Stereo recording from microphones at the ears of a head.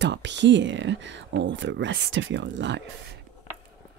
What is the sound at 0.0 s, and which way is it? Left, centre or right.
Speech, right.